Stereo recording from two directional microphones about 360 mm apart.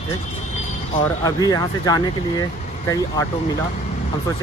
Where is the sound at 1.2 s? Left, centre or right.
Centre.